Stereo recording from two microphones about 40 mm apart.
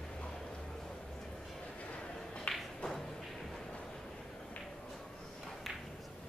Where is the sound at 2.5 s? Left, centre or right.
Left.